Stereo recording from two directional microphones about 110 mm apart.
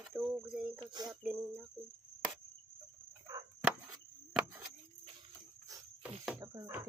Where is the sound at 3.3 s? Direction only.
30° right (ahead or behind).